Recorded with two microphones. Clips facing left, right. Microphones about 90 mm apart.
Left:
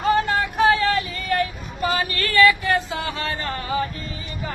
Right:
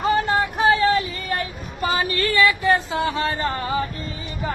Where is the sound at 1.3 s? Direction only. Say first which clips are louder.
Left 6 dB; 25° right (ahead or behind).